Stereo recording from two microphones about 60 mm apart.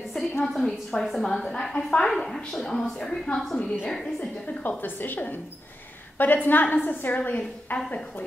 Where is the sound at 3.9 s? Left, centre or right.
Centre.